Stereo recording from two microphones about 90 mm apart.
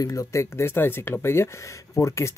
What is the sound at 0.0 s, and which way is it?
Speech, 40° left (ahead or behind).